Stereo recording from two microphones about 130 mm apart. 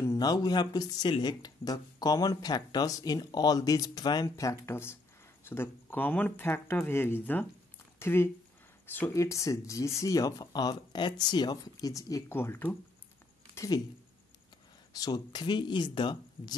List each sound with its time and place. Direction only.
0.0 s speech: 25° left (ahead or behind)
13.6 s speech: 30° left (ahead or behind)
14.9 s speech: 30° left (ahead or behind)